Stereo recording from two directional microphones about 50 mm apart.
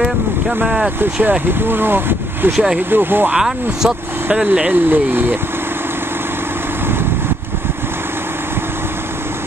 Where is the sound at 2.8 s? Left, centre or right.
Right.